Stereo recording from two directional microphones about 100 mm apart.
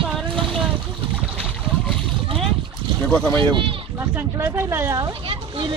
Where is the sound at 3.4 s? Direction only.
60° right (ahead or behind).